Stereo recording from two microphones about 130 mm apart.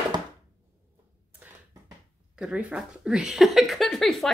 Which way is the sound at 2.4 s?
10° right (ahead or behind).